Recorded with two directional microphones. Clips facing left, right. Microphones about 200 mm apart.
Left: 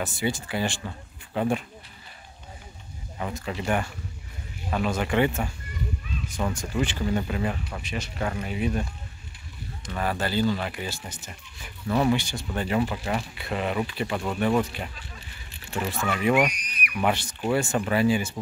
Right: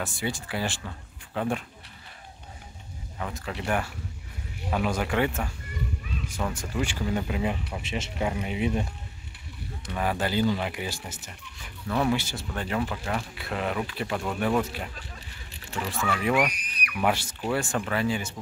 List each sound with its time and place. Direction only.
0.0 s speech: centre (ahead or behind)
3.2 s speech: 5° left (ahead or behind)
7.8 s speech: 25° right (ahead or behind)
8.2 s speech: 15° right (ahead or behind)
9.9 s speech: 15° right (ahead or behind)
11.1 s speech: 5° left (ahead or behind)
12.5 s speech: 5° left (ahead or behind)
17.7 s speech: 10° left (ahead or behind)